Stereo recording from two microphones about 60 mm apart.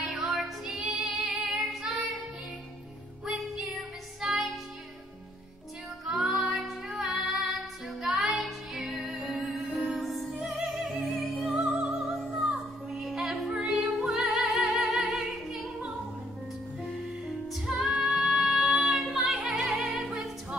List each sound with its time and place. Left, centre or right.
0.1 s music: centre
3.3 s music: centre
6.0 s music: centre
17.6 s music: centre
19.7 s music: centre